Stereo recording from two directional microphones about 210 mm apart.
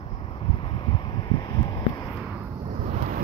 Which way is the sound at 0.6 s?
25° left (ahead or behind).